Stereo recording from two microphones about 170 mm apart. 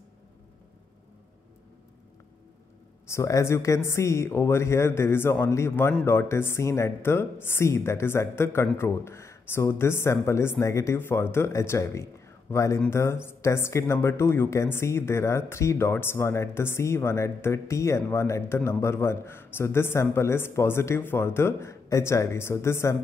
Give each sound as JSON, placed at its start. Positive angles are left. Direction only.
{"t": 3.1, "sound": "speech", "side_deg": 20}